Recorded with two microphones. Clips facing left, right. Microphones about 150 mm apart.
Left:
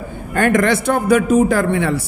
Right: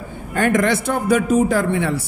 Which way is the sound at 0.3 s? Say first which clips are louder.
Left 2 dB; 65° left (ahead or behind).